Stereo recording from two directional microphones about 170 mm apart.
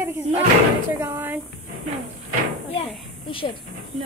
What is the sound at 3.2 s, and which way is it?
Speech, 30° left (ahead or behind).